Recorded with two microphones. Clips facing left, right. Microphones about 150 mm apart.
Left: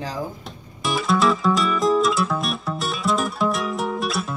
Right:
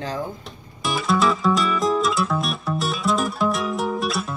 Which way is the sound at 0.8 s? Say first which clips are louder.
Left 1 dB; centre (ahead or behind).